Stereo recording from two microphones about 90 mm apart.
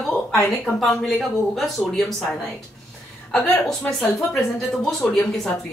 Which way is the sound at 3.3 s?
15° left (ahead or behind).